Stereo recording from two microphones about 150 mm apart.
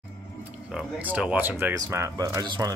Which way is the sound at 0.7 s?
5° right (ahead or behind).